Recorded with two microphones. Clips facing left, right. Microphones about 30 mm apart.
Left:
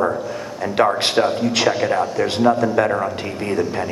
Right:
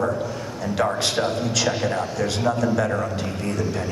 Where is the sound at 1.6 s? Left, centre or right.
Left.